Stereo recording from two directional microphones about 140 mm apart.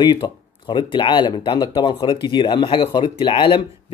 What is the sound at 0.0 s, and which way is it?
Speech, 35° left (ahead or behind).